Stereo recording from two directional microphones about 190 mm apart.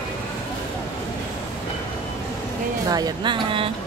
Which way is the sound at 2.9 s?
20° right (ahead or behind).